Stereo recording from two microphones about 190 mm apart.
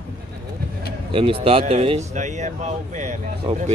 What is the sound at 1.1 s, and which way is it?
Speech, 30° right (ahead or behind).